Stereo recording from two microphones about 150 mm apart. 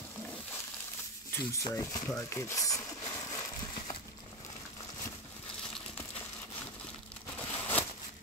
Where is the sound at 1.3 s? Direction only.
15° left (ahead or behind).